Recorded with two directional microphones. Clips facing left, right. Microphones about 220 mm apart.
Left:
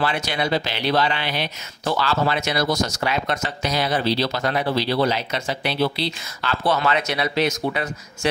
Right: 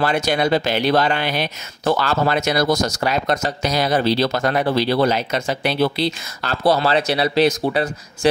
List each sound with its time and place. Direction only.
0.0 s speech: 45° right (ahead or behind)